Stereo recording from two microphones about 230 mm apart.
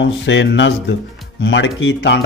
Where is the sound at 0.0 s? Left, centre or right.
Left.